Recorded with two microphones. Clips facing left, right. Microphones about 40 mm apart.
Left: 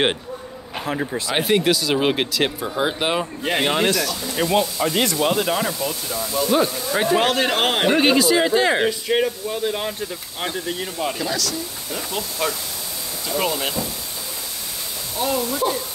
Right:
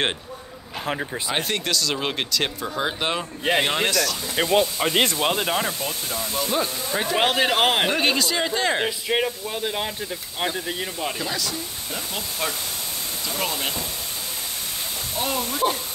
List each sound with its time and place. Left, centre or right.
1.3 s speech: centre
4.4 s speech: right
5.2 s speech: centre
5.8 s speech: right
6.5 s speech: centre
7.2 s speech: centre
7.9 s speech: centre
8.8 s speech: centre
13.4 s speech: centre
15.1 s speech: centre